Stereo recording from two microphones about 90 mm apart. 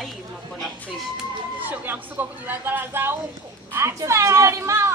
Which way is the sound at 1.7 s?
20° right (ahead or behind).